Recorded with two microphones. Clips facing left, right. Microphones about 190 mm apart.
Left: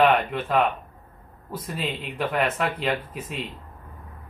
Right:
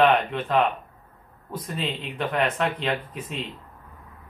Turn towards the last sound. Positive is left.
turn(degrees=5)  # may be behind; listen again after turning